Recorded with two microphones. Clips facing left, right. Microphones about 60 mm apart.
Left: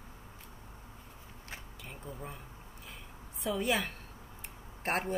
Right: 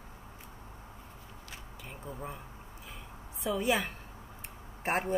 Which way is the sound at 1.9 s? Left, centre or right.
Centre.